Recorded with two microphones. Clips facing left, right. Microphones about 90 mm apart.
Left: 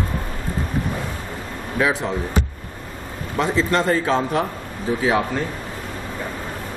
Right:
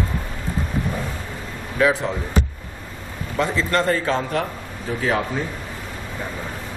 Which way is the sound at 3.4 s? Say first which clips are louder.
Left 1 dB; 20° left (ahead or behind).